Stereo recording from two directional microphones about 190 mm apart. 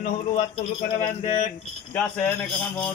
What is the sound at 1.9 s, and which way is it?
Speech, 10° left (ahead or behind).